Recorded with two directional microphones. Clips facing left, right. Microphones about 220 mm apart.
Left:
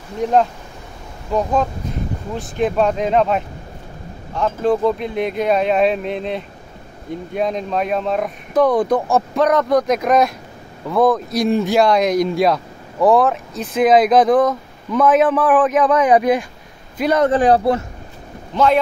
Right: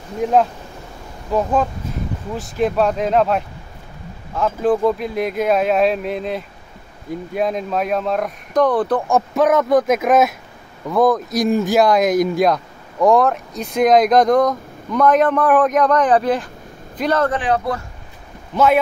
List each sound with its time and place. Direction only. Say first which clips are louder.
0.2 s speech: even; 5° right (ahead or behind)
9.0 s a man's voice: even; centre (ahead or behind)
17.3 s a man's voice: left 6 dB; 35° left (ahead or behind)
18.5 s speech: even; 5° right (ahead or behind)